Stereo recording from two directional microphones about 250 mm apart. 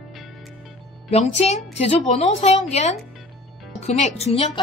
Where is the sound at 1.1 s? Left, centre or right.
Left.